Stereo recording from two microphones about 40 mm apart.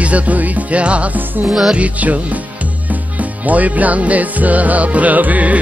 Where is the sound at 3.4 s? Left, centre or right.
Right.